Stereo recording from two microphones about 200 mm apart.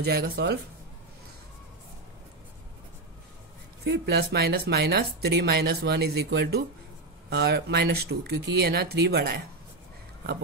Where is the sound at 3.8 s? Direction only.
55° right (ahead or behind).